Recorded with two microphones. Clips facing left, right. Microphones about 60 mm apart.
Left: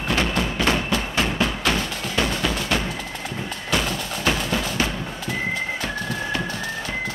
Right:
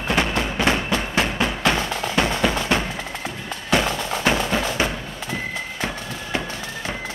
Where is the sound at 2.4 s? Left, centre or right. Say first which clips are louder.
Right 3 dB; right.